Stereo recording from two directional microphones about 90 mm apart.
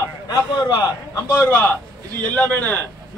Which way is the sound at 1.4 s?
25° left (ahead or behind).